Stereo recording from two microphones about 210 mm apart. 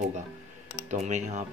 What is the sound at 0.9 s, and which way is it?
Speech, 35° right (ahead or behind).